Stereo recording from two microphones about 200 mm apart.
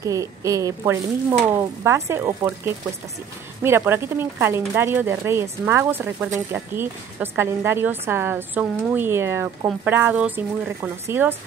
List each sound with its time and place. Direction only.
0.0 s a woman's voice: 15° right (ahead or behind)